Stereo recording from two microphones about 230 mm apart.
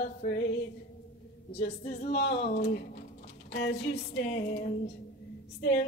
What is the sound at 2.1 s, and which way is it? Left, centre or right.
Female singing, left.